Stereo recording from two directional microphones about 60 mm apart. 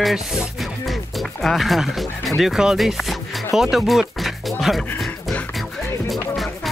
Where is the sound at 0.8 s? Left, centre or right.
Centre.